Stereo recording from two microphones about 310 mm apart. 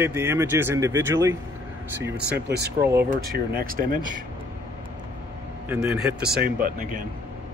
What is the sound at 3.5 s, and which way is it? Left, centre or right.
Speech, right.